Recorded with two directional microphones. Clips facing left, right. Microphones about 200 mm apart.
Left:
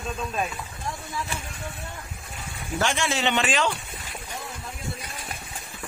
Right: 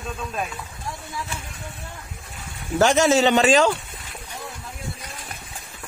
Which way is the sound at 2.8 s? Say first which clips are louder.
Right 9 dB; 40° right (ahead or behind).